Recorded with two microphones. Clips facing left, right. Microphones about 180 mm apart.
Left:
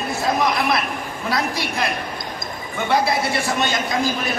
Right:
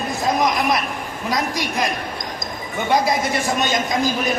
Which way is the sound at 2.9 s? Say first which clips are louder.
Right 1 dB; 15° right (ahead or behind).